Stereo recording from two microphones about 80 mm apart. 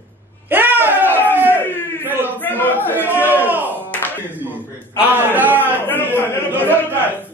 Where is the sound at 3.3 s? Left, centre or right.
Right.